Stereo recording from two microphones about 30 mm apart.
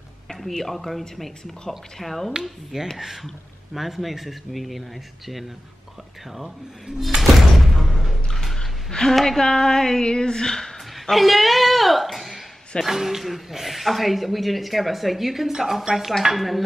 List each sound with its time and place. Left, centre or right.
0.3 s speech: centre
2.7 s speech: right
3.7 s speech: centre
7.2 s music: centre
8.5 s gasp: left
9.4 s a woman's voice: left
11.0 s a sound: centre
12.8 s speech: centre